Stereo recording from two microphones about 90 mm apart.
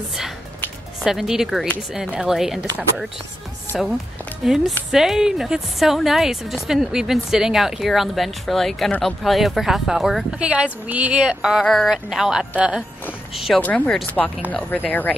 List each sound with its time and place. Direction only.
1.0 s a woman's voice: 5° right (ahead or behind)
3.7 s a woman's voice: centre (ahead or behind)
11.6 s a woman's voice: 5° left (ahead or behind)
13.6 s speech: 15° left (ahead or behind)